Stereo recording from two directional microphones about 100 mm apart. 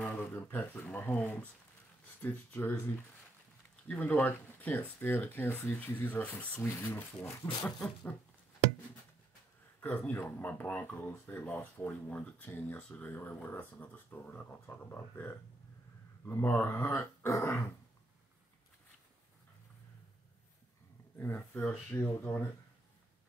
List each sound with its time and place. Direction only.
0.2 s speech: 20° left (ahead or behind)
3.8 s speech: 15° left (ahead or behind)
9.8 s speech: 15° left (ahead or behind)
21.2 s speech: 20° left (ahead or behind)